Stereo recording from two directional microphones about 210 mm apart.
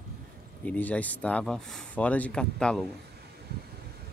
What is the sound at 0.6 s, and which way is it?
Speech, 5° left (ahead or behind).